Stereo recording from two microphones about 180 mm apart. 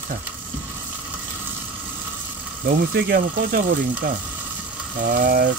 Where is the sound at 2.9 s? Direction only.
65° right (ahead or behind).